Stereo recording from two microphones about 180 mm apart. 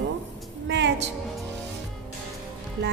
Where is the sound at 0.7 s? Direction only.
75° right (ahead or behind).